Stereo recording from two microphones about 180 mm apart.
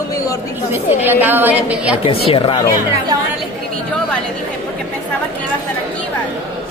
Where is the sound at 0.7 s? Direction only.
10° right (ahead or behind).